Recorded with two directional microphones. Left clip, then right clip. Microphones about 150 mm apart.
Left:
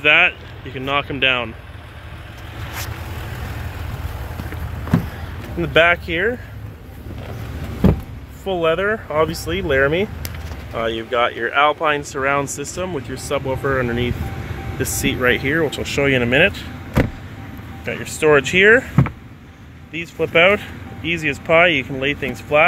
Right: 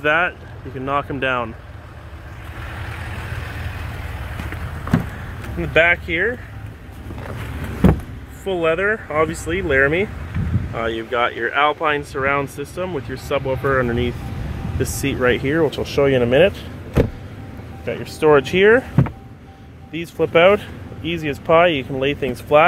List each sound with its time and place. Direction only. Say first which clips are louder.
0.0 s speech: left 4 dB; 5° right (ahead or behind)
5.6 s speech: left 1 dB; 20° left (ahead or behind)
8.5 s speech: even; 5° left (ahead or behind); by 16.6 s 10° right (ahead or behind)
17.8 s speech: even; 10° right (ahead or behind)
19.9 s speech: right 1 dB; 25° right (ahead or behind)